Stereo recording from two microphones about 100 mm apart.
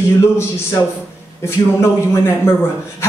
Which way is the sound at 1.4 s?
25° left (ahead or behind).